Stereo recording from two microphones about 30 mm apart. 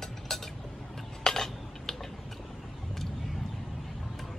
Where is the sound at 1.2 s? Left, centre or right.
Centre.